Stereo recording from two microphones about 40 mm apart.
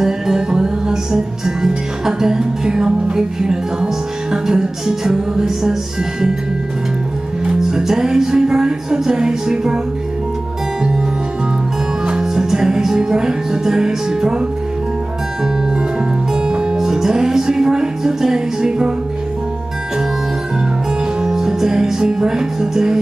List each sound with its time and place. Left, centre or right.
0.0 s music: centre
7.8 s music: centre
12.1 s music: centre
16.4 s music: right
21.2 s music: centre